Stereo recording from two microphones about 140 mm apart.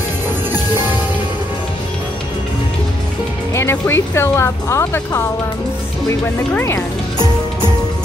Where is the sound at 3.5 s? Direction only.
15° left (ahead or behind).